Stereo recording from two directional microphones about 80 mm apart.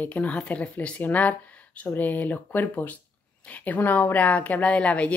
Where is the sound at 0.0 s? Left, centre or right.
Centre.